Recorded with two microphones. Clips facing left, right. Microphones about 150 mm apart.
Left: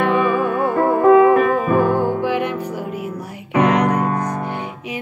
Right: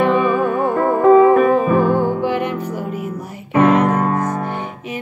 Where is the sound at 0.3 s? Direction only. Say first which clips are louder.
Right 1 dB; 45° right (ahead or behind).